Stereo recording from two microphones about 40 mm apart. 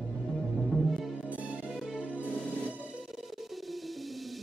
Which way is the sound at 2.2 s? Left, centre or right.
Centre.